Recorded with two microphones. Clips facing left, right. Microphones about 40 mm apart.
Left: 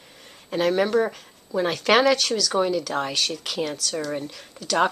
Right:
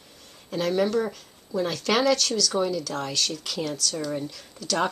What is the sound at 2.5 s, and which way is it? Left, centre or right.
Speech, left.